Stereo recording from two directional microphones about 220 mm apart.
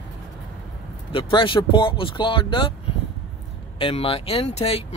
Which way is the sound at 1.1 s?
20° left (ahead or behind).